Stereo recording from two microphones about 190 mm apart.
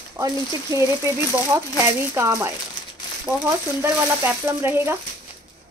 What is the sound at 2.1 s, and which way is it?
Speech, 15° right (ahead or behind).